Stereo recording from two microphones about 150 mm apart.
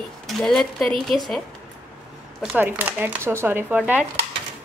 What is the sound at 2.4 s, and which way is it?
Speech, 10° right (ahead or behind).